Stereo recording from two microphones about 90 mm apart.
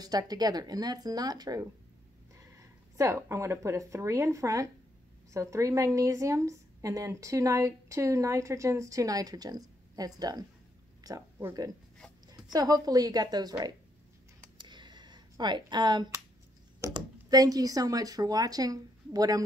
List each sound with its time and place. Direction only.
0.0 s speech: 45° right (ahead or behind)
2.3 s a woman's voice: 35° right (ahead or behind)
12.5 s speech: 45° right (ahead or behind)
14.6 s a sound: 60° right (ahead or behind)
16.9 s speech: 45° right (ahead or behind)